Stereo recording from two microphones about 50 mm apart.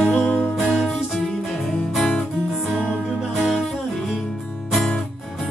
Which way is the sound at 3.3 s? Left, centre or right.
Centre.